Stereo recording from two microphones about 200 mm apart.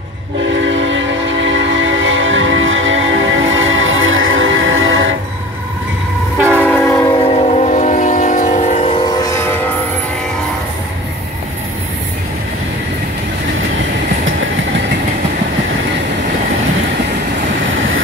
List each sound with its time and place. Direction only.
0.5 s train: 65° right (ahead or behind)
6.5 s train: 10° left (ahead or behind)
7.3 s train: 35° left (ahead or behind)
9.0 s train: 20° left (ahead or behind)